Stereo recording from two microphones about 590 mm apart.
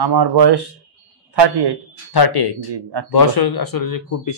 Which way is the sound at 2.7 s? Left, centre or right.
Right.